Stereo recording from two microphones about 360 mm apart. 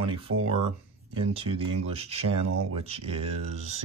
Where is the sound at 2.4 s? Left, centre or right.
Right.